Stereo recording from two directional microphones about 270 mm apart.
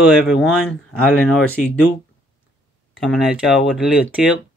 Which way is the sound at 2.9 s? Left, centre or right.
Centre.